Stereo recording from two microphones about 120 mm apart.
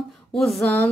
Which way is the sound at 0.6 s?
15° left (ahead or behind).